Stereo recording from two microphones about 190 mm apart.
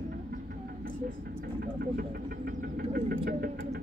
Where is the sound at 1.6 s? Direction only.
50° right (ahead or behind).